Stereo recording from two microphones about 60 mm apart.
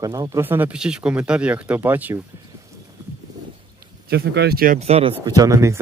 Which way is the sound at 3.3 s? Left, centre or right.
Right.